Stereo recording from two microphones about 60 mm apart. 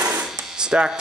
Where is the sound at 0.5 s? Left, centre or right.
Centre.